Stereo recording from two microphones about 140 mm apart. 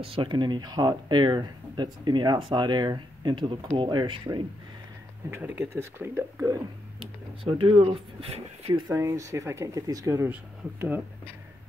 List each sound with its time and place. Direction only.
0.0 s speech: 40° right (ahead or behind)
5.3 s speech: 15° right (ahead or behind)
7.0 s speech: 40° right (ahead or behind)
8.9 s speech: 20° right (ahead or behind)